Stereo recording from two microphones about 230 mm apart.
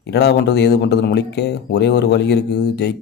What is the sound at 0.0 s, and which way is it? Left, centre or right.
Speech, left.